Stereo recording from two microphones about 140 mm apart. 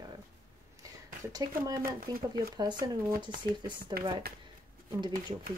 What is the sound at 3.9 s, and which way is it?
Speech, 90° right.